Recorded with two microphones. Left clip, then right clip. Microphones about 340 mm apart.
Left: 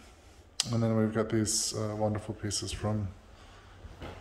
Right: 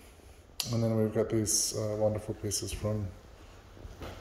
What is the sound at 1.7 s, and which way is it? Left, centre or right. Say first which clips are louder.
Speech: right 2 dB; left.